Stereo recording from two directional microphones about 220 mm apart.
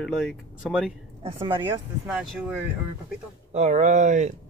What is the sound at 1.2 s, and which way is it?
Speech, 20° right (ahead or behind).